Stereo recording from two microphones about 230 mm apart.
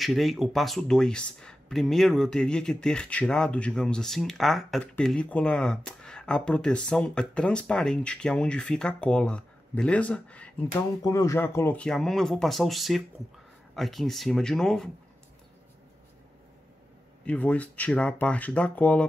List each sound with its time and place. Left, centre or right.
0.0 s speech: centre
17.2 s speech: centre